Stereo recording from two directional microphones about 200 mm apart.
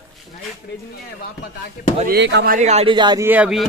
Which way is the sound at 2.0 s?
55° right (ahead or behind).